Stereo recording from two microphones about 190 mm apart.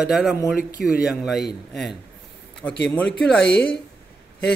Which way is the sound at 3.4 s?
60° left (ahead or behind).